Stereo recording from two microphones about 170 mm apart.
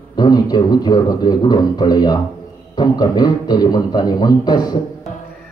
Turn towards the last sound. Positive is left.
turn(degrees=25)  # may be behind; listen again after turning